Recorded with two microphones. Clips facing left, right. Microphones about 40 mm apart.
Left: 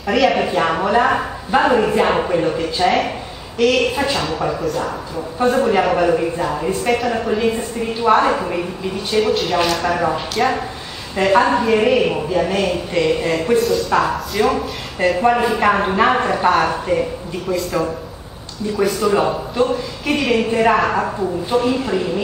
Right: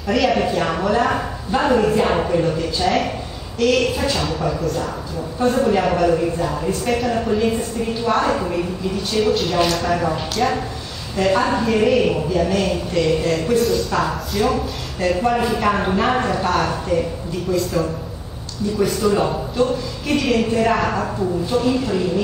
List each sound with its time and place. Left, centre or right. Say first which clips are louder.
0.0 s a man's voice: left 2 dB; centre
3.5 s a woman's voice: left 2 dB; centre
3.8 s a man's voice: left 2 dB; centre
6.9 s speech: left 2 dB; centre
7.4 s a man's voice: left 1 dB; centre
9.2 s speech: even; centre
9.9 s a man's voice: left 2 dB; centre
13.6 s speech: left 2 dB; centre
15.2 s a woman's voice: left 4 dB; centre
17.5 s speech: left 1 dB; centre
19.1 s a man's voice: left 2 dB; centre